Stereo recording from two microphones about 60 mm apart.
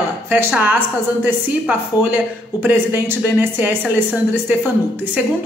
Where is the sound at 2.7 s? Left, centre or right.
Right.